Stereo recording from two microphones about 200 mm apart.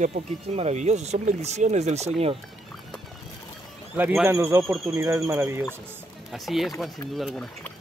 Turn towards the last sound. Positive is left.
turn(degrees=0)  # may be behind; listen again after turning